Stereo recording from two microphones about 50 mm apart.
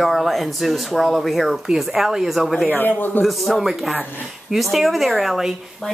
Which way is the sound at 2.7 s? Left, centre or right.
Left.